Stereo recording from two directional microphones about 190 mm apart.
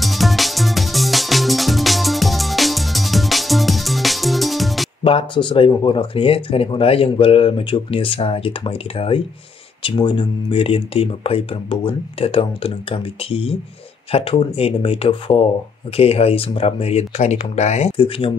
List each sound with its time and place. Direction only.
0.0 s music: centre (ahead or behind)
5.0 s speech: 25° left (ahead or behind)